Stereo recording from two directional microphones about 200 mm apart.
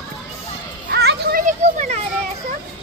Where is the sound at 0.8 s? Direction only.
55° right (ahead or behind).